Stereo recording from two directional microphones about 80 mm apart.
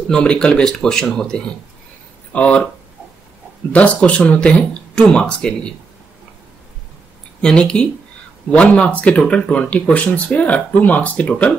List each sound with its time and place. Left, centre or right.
0.1 s speech: centre
3.7 s speech: centre
7.4 s speech: centre